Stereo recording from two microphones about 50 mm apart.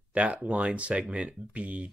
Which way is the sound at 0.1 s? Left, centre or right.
Right.